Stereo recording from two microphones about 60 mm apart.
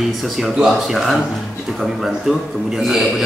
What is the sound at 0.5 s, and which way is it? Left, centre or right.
Speech, centre.